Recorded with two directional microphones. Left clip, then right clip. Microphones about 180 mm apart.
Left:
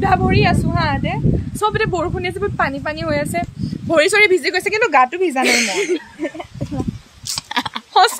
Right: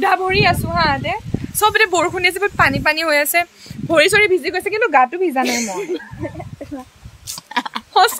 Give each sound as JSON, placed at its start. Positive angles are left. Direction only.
{"t": 0.0, "sound": "vehicle", "side_deg": -15}
{"t": 0.4, "sound": "speech", "side_deg": -30}
{"t": 1.6, "sound": "speech", "side_deg": 0}
{"t": 5.4, "sound": "speech", "side_deg": 45}
{"t": 7.7, "sound": "a sound", "side_deg": 0}